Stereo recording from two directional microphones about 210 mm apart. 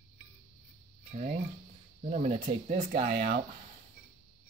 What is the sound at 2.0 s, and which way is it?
Speech, 35° right (ahead or behind).